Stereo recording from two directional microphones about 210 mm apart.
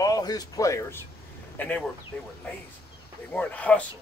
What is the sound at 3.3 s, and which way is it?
Speech, 5° left (ahead or behind).